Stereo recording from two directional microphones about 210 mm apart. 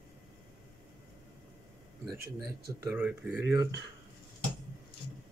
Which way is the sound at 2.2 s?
10° right (ahead or behind).